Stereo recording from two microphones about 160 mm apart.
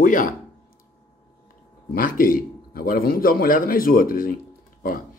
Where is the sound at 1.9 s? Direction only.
60° left (ahead or behind).